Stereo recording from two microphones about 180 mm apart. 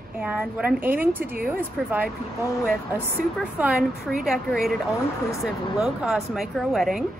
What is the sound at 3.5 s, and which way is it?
Speech, 10° right (ahead or behind).